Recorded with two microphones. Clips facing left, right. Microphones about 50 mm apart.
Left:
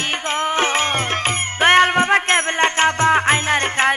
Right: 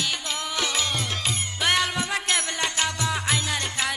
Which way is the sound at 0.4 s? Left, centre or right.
Left.